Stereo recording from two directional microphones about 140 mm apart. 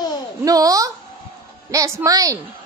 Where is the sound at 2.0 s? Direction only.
25° right (ahead or behind).